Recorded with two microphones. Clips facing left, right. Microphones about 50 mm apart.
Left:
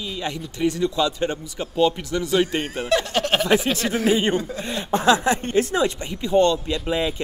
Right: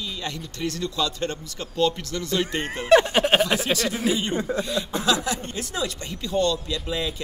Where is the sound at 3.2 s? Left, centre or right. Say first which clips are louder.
Right 2 dB; centre.